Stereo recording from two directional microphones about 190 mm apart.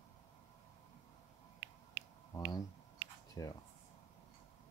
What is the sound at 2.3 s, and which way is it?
Speech, 20° left (ahead or behind).